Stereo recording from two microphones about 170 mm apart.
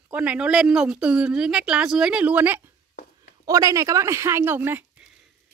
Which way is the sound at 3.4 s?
20° right (ahead or behind).